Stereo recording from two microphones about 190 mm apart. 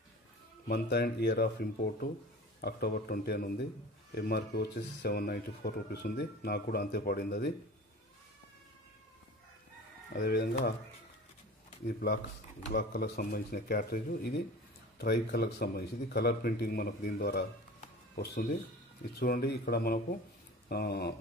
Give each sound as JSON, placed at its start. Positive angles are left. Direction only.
{"t": 0.7, "sound": "speech", "side_deg": 55}
{"t": 10.1, "sound": "speech", "side_deg": 55}
{"t": 12.0, "sound": "speech", "side_deg": 55}